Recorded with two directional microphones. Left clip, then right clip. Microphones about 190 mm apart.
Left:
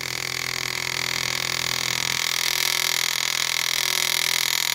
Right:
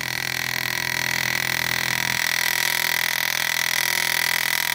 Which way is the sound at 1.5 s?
5° right (ahead or behind).